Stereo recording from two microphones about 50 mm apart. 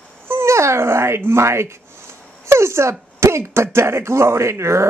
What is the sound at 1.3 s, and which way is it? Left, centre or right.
Speech, right.